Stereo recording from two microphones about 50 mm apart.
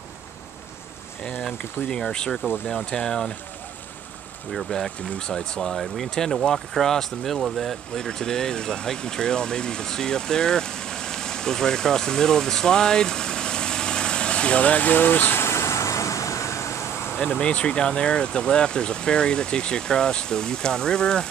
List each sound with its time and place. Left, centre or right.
1.9 s speech: centre
4.5 s speech: centre; by 15.3 s left
15.3 s vehicle: left
17.4 s speech: left